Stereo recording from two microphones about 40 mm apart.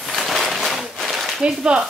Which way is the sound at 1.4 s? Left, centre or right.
Right.